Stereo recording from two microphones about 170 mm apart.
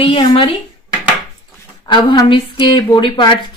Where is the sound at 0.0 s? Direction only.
30° left (ahead or behind).